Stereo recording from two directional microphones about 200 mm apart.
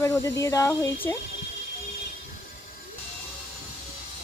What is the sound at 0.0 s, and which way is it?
Speech, 15° left (ahead or behind).